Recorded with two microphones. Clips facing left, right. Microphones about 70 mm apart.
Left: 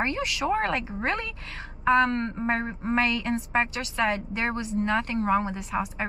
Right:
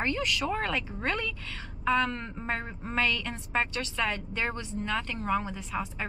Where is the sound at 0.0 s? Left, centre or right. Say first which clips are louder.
Left 2 dB; centre.